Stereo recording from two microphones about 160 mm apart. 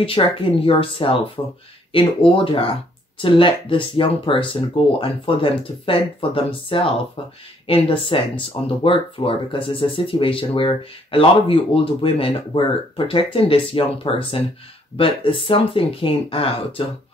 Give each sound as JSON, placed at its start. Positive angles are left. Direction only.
{"t": 0.0, "sound": "speech", "side_deg": 35}